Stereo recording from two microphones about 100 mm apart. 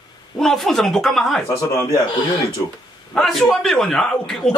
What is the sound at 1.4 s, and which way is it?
Speech, 30° left (ahead or behind).